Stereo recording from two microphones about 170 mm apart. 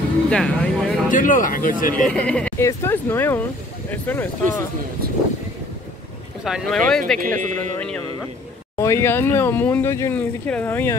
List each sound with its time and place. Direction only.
0.3 s speech: 5° left (ahead or behind)
1.1 s speech: 50° left (ahead or behind)
2.0 s speech: 5° left (ahead or behind)
5.0 s speech: 65° right (ahead or behind)
6.4 s speech: centre (ahead or behind)
7.2 s speech: 50° right (ahead or behind)
7.7 s speech: 10° left (ahead or behind)